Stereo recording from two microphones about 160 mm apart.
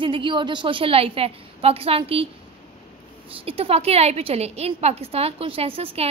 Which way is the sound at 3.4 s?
35° right (ahead or behind).